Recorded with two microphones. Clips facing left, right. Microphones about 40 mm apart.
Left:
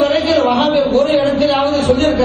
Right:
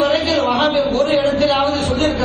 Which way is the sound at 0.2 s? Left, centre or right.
Left.